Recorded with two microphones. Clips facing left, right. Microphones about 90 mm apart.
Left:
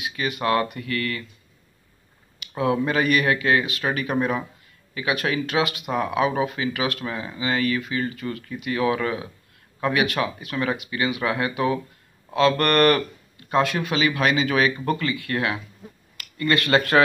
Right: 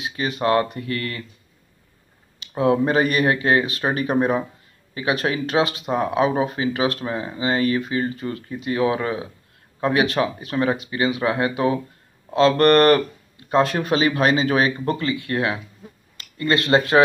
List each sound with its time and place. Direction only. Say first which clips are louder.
0.0 s speech: right 3 dB; 30° right (ahead or behind)
2.4 s speech: right 4 dB; 30° right (ahead or behind)